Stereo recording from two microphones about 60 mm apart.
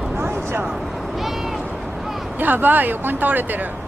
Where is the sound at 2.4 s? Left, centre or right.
Right.